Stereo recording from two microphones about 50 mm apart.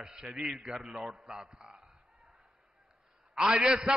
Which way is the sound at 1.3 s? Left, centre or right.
Centre.